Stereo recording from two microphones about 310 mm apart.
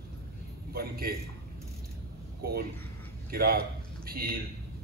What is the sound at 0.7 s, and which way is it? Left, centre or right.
Speech, right.